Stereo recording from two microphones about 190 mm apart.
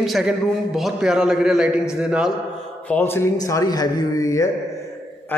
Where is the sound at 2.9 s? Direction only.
10° left (ahead or behind).